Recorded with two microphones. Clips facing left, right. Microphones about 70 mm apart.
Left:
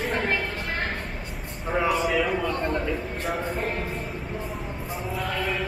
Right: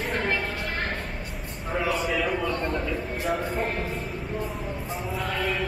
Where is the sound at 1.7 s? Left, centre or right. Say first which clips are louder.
Left 3 dB; centre.